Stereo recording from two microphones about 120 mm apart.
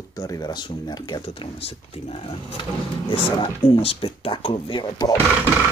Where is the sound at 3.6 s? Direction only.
55° left (ahead or behind); by 5.1 s 35° left (ahead or behind).